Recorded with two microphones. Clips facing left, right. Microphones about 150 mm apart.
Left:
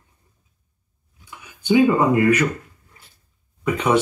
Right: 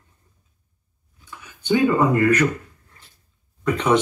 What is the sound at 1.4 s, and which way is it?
Speech, 10° left (ahead or behind).